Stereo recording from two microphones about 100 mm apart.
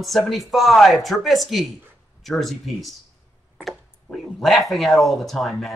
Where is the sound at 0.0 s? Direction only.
Centre (ahead or behind).